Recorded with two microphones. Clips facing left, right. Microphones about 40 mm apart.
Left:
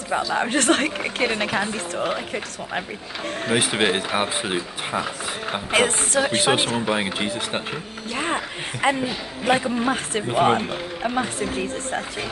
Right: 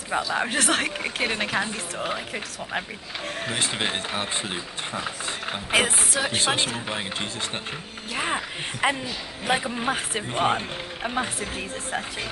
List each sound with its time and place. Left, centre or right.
0.3 s speech: centre
3.5 s speech: left
5.7 s speech: centre
6.4 s speech: centre
6.7 s speech: centre
8.1 s speech: centre